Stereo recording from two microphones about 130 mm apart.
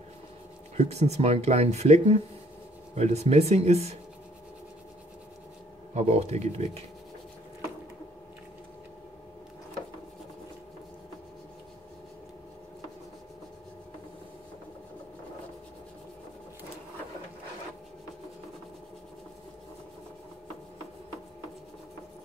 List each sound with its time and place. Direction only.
0.7 s speech: 55° right (ahead or behind)
5.9 s speech: 55° right (ahead or behind)